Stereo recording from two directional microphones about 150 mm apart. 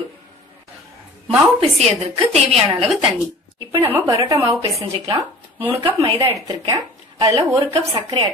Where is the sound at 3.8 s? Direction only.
15° right (ahead or behind).